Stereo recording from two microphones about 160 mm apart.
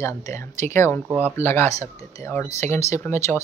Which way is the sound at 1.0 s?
10° right (ahead or behind).